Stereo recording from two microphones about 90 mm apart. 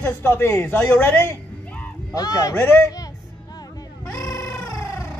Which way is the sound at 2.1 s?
45° left (ahead or behind).